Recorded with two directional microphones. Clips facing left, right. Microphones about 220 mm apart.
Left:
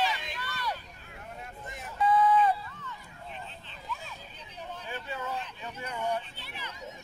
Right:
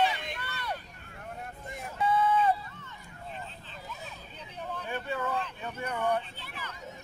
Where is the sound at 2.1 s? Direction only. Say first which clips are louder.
Left 3 dB; 25° right (ahead or behind).